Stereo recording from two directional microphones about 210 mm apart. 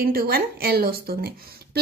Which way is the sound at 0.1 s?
45° right (ahead or behind).